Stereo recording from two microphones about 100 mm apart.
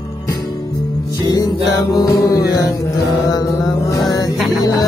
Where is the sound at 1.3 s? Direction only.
35° left (ahead or behind).